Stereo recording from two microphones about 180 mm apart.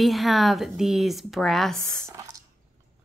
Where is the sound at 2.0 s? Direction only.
15° right (ahead or behind).